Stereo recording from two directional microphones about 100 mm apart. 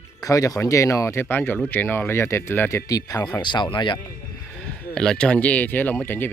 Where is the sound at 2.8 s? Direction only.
40° left (ahead or behind).